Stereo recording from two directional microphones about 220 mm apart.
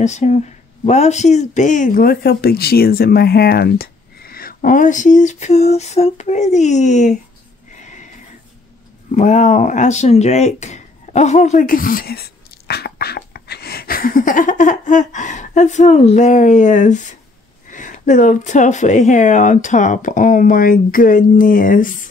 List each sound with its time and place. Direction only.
0.0 s speech: 30° left (ahead or behind)
7.8 s a sound: 35° left (ahead or behind)
9.1 s speech: 35° left (ahead or behind)